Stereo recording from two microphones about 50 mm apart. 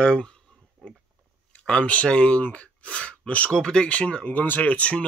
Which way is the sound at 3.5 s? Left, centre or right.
Centre.